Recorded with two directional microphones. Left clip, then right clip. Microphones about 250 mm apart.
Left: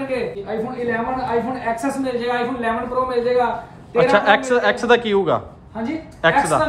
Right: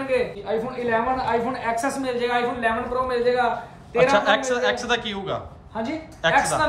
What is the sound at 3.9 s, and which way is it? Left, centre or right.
A man's voice, centre.